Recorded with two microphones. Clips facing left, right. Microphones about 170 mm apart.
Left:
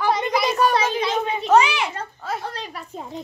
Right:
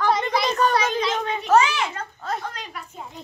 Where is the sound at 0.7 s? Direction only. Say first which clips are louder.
Left 1 dB; 25° left (ahead or behind).